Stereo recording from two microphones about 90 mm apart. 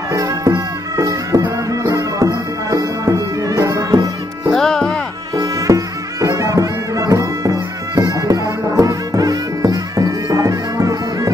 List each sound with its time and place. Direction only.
0.1 s music: 40° right (ahead or behind)
4.5 s music: 5° left (ahead or behind)
5.3 s music: 40° right (ahead or behind)